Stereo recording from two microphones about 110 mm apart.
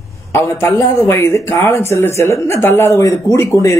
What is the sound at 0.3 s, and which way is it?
A man's voice, 25° left (ahead or behind).